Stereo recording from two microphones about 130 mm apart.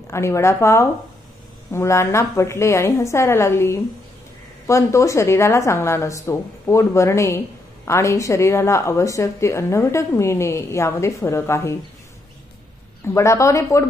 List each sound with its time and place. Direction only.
0.1 s a woman's voice: 20° left (ahead or behind)
13.0 s a woman's voice: 20° left (ahead or behind)